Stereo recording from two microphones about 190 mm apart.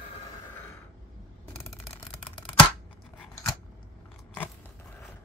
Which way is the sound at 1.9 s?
25° left (ahead or behind).